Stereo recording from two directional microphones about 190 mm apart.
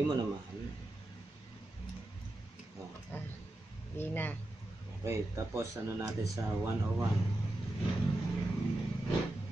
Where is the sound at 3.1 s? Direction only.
10° left (ahead or behind).